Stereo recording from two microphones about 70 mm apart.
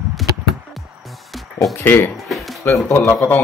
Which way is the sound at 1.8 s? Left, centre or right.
Left.